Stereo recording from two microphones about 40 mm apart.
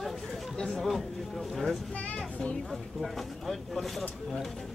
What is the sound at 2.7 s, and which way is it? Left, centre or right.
Speech, centre.